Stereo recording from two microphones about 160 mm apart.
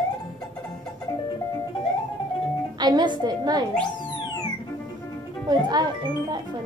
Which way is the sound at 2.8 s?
25° right (ahead or behind).